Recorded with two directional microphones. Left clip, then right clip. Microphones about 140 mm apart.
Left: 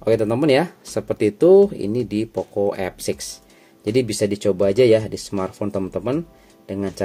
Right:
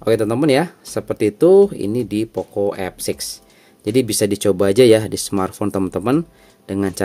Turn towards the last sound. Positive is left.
turn(degrees=-40)  # may be behind; listen again after turning